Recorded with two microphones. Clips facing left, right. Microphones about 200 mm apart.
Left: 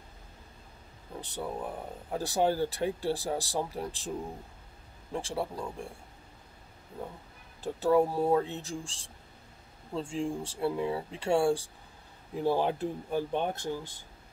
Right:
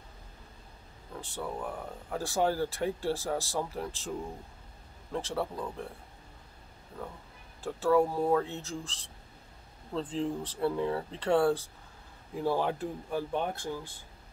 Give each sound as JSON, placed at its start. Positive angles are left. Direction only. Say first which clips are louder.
{"t": 1.1, "sound": "speech", "louder": "left 1 dB", "side_deg": 20}
{"t": 5.1, "sound": "speech", "louder": "even", "side_deg": 15}
{"t": 7.6, "sound": "speech", "louder": "left 1 dB", "side_deg": 20}